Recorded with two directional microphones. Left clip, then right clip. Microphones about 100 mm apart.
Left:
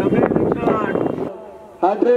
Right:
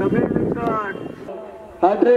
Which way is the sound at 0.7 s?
35° left (ahead or behind).